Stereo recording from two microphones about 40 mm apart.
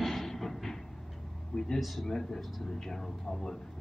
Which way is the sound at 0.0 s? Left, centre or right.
Centre.